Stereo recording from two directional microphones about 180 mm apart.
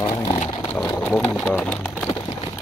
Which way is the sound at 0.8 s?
15° left (ahead or behind).